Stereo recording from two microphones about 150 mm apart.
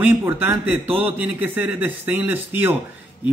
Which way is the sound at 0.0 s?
15° right (ahead or behind).